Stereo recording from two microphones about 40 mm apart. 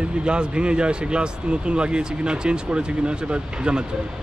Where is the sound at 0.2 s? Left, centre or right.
Right.